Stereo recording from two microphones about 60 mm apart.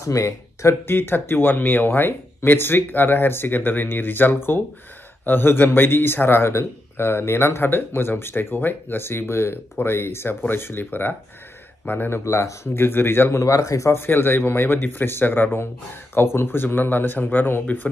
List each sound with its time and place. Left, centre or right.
0.0 s speech: left
0.9 s speech: left
12.1 s speech: left
12.7 s speech: left
13.4 s speech: left
13.9 s speech: left